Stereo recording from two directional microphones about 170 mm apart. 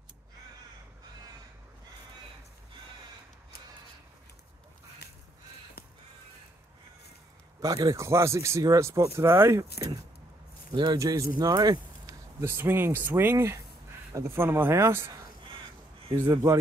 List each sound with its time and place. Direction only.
7.6 s speech: 20° right (ahead or behind)
10.7 s speech: 25° right (ahead or behind)
16.2 s speech: 15° right (ahead or behind)